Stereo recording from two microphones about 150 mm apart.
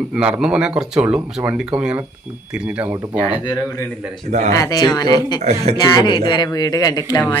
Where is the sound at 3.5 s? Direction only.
15° left (ahead or behind).